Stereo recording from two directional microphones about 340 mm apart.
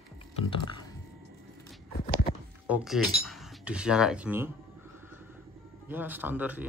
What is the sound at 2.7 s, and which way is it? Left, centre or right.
Speech, centre.